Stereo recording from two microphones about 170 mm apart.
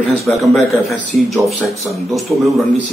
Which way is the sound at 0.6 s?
Centre (ahead or behind).